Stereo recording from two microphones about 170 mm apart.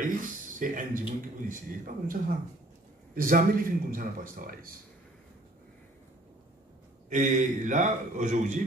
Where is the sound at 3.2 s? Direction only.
55° right (ahead or behind).